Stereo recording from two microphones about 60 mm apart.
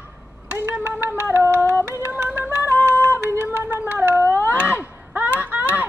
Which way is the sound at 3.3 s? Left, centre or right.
Right.